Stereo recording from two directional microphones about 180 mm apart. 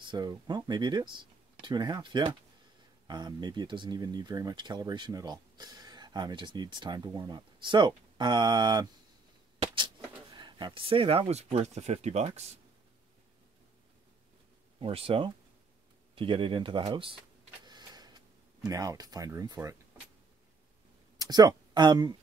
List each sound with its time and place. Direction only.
0.0 s speech: 25° right (ahead or behind)
10.3 s speech: 25° right (ahead or behind)
14.8 s speech: 30° right (ahead or behind)
17.6 s a sound: 25° right (ahead or behind)
18.7 s speech: 20° right (ahead or behind)
21.2 s speech: 20° right (ahead or behind)